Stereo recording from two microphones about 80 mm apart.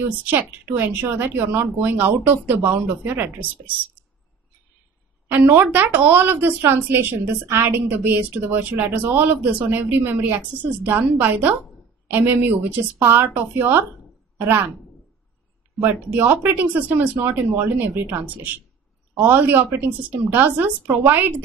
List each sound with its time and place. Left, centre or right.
0.2 s speech: right
5.3 s speech: right
15.8 s speech: right